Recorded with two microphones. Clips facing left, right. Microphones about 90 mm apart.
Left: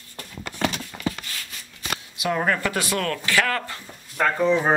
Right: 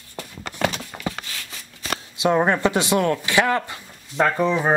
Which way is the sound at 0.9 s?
15° right (ahead or behind).